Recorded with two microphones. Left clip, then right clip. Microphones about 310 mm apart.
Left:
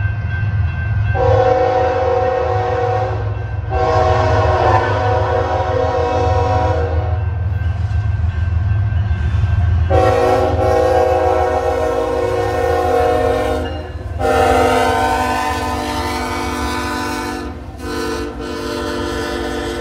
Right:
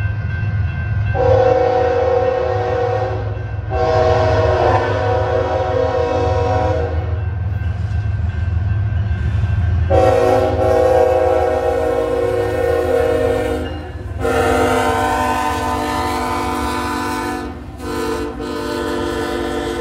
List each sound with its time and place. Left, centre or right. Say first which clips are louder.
1.2 s music: even; left
3.8 s train: even; left
9.8 s train: even; left
12.4 s music: left 1 dB; centre
14.2 s train: left 3 dB; centre; by 19.8 s right